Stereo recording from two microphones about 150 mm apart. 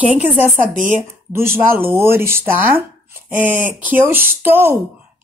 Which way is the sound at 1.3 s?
15° right (ahead or behind).